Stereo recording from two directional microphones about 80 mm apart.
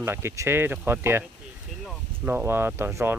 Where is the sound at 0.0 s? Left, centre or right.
Right.